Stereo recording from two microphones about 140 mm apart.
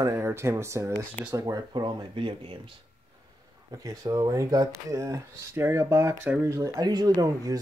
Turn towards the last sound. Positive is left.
turn(degrees=-25)  # may be behind; listen again after turning